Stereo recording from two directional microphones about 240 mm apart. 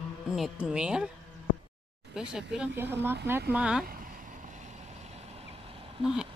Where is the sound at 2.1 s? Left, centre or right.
Centre.